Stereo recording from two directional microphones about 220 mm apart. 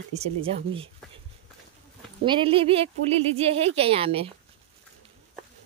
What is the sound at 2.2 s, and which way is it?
Speech, 25° right (ahead or behind).